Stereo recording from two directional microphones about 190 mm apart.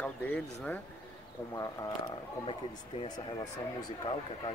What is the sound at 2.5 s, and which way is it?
Speech, 25° left (ahead or behind).